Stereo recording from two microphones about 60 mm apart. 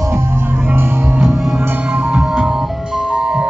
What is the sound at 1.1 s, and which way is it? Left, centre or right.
Music, centre.